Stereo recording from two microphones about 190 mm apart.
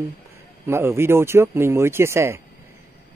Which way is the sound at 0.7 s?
15° right (ahead or behind).